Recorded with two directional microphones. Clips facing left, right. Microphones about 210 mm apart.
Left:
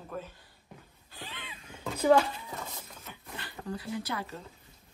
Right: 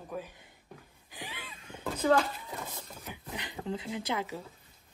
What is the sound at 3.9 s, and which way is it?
Speech, 20° right (ahead or behind).